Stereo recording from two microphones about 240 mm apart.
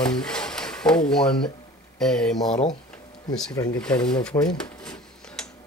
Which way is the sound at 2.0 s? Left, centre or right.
Centre.